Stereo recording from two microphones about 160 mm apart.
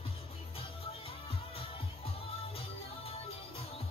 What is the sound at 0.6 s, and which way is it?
Music, 35° left (ahead or behind).